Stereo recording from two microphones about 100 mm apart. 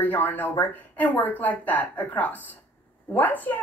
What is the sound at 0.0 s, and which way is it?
A woman's voice, 15° left (ahead or behind).